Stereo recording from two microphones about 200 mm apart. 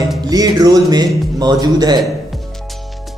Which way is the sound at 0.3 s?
20° right (ahead or behind).